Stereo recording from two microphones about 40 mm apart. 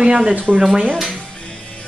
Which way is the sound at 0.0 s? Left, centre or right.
Right.